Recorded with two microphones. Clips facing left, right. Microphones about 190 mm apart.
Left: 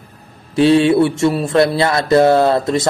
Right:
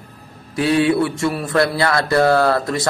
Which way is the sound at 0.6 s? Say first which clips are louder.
Left 5 dB; 25° left (ahead or behind).